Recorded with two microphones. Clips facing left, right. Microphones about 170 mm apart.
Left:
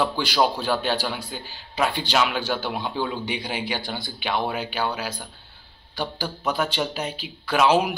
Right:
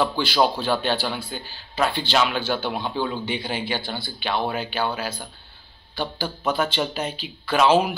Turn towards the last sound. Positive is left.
turn(degrees=10)  # may be behind; listen again after turning